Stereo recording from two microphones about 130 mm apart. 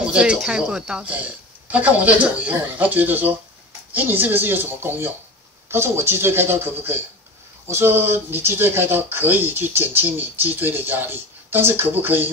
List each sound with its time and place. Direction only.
0.0 s speech: 10° right (ahead or behind)